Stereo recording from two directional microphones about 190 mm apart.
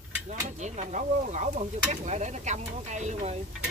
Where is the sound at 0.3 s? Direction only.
40° right (ahead or behind).